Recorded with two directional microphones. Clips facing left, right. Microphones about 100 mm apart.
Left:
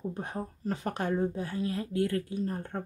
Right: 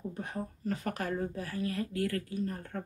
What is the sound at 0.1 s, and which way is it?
Speech, 30° left (ahead or behind).